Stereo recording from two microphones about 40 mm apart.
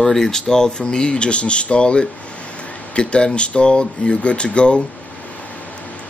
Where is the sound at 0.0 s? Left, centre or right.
Centre.